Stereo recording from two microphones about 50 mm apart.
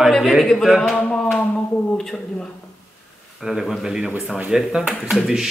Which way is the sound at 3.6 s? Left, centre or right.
Centre.